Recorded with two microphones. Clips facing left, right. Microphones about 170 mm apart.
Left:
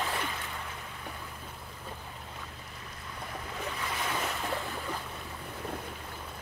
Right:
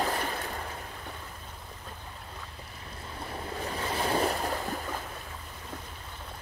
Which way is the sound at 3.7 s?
35° right (ahead or behind).